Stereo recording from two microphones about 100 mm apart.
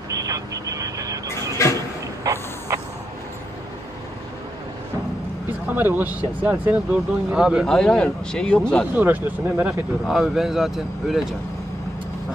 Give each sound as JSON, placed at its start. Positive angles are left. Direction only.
{"t": 0.1, "sound": "vehicle", "side_deg": -35}
{"t": 2.3, "sound": "a sound", "side_deg": -35}
{"t": 5.7, "sound": "speech", "side_deg": -20}
{"t": 7.6, "sound": "speech", "side_deg": 5}
{"t": 8.9, "sound": "speech", "side_deg": -15}
{"t": 10.0, "sound": "speech", "side_deg": -5}